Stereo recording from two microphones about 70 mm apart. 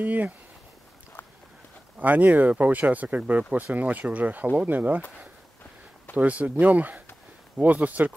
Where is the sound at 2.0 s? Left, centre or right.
Right.